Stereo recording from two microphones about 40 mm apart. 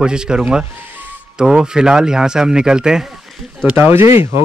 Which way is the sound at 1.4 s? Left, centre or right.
Centre.